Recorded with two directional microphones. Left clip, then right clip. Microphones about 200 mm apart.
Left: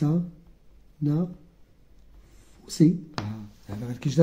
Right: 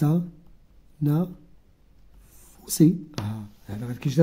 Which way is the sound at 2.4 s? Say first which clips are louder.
Right 2 dB; 40° right (ahead or behind).